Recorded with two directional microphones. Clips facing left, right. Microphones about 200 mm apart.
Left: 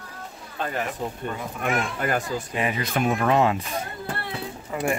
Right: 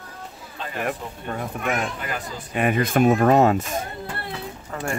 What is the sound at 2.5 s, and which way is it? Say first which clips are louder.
Speech: right 7 dB; 55° right (ahead or behind).